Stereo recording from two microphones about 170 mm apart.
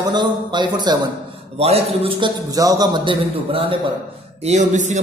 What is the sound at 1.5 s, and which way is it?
A man's voice, 35° right (ahead or behind).